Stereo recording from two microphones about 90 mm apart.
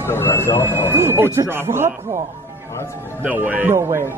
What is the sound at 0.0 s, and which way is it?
Speech, 30° left (ahead or behind).